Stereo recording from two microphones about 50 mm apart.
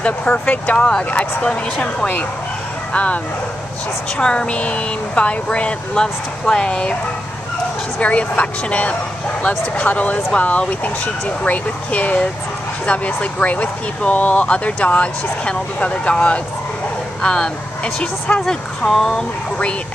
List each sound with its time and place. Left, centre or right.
0.0 s speech: left
0.8 s speech: centre
4.2 s speech: centre
8.0 s speech: left; by 19.2 s centre